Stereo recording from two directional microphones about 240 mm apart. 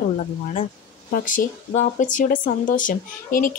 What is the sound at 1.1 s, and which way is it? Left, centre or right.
Speech, left.